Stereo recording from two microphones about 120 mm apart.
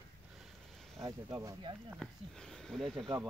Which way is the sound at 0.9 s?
30° right (ahead or behind).